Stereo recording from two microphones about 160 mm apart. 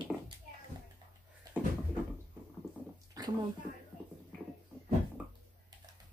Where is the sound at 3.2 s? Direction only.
25° right (ahead or behind).